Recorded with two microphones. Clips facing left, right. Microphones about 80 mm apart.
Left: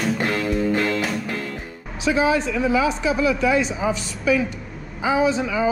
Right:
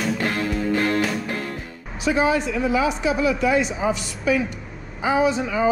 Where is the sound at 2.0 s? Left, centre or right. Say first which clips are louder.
Left 1 dB; right.